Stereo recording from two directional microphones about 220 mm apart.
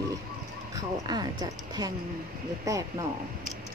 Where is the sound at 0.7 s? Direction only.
15° right (ahead or behind).